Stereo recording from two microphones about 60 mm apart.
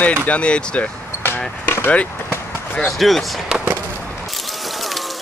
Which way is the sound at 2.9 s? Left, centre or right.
Centre.